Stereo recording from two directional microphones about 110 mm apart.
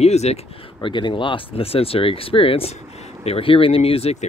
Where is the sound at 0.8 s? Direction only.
45° left (ahead or behind).